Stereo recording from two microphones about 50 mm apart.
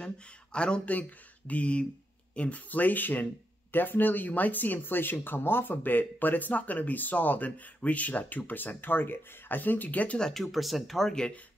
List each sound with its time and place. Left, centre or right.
0.0 s speech: centre
10.3 s speech: centre